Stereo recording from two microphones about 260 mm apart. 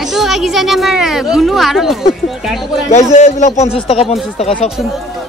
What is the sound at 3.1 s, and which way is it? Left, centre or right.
A man's voice, left.